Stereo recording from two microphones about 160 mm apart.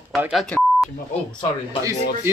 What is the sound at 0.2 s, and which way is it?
Speech, centre (ahead or behind).